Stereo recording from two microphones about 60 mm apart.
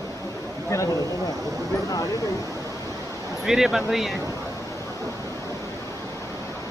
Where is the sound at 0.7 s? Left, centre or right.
Left.